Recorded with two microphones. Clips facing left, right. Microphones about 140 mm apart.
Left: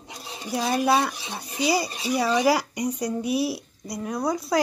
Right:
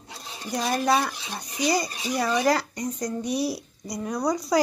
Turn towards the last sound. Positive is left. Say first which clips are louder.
# right 1 dB
turn(degrees=0)  # may be behind; listen again after turning